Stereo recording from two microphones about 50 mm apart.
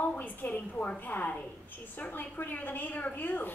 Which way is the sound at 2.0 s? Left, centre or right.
Left.